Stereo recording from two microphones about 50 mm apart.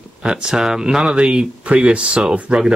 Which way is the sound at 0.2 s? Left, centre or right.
Centre.